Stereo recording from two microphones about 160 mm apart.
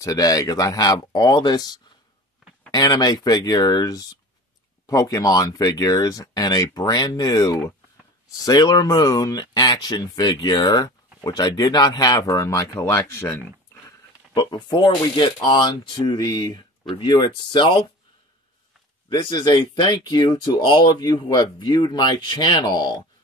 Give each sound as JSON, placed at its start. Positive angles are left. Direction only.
{"t": 0.0, "sound": "speech", "side_deg": 20}
{"t": 13.8, "sound": "speech", "side_deg": 25}
{"t": 19.0, "sound": "speech", "side_deg": 30}